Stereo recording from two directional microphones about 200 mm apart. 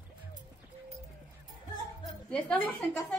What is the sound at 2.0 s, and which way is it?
A woman's voice, 5° left (ahead or behind).